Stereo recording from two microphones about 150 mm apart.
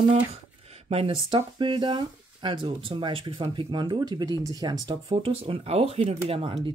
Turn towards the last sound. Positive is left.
turn(degrees=-40)  # may be behind; listen again after turning